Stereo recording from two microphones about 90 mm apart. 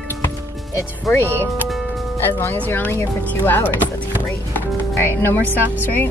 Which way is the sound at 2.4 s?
25° left (ahead or behind).